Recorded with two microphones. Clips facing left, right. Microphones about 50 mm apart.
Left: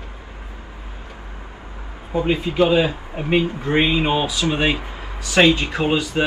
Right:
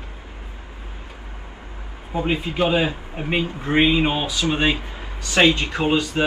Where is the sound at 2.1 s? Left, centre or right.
Centre.